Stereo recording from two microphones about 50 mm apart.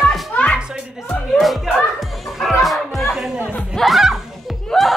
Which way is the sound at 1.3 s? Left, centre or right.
Centre.